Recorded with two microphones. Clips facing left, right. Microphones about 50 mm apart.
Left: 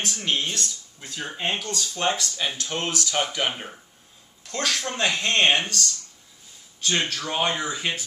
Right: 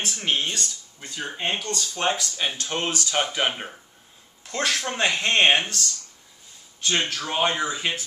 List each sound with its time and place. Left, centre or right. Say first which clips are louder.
0.2 s speech: right 1 dB; centre
6.9 s speech: even; centre